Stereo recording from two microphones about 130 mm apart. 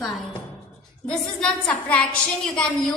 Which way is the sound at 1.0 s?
5° left (ahead or behind).